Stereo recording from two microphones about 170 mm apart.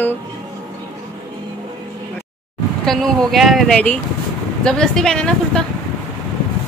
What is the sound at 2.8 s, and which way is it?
Speech, centre (ahead or behind).